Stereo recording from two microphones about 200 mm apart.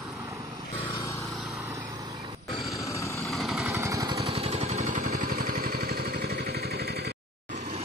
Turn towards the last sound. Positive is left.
turn(degrees=-50)  # may be behind; listen again after turning